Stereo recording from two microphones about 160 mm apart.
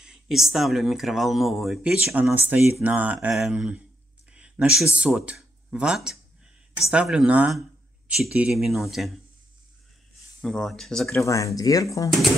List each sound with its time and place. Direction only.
0.0 s speech: centre (ahead or behind)
10.4 s speech: centre (ahead or behind)
11.1 s speech: 20° left (ahead or behind)